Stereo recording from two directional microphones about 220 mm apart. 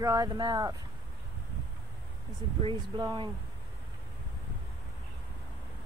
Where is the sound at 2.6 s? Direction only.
20° right (ahead or behind).